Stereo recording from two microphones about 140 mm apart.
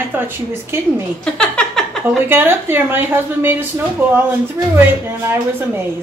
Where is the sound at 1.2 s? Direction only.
5° left (ahead or behind).